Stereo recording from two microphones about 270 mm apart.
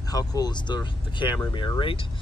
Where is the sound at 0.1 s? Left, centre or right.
Centre.